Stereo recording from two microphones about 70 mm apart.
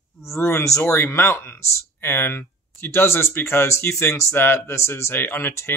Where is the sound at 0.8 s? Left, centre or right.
Left.